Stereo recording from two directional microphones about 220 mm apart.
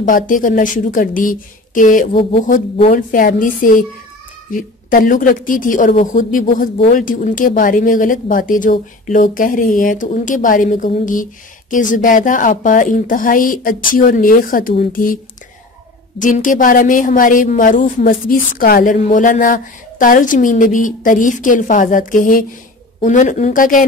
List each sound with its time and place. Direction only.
0.0 s a woman's voice: 40° left (ahead or behind)
16.2 s a woman's voice: 35° left (ahead or behind)